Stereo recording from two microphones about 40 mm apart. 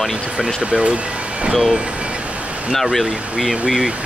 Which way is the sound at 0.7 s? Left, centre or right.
Right.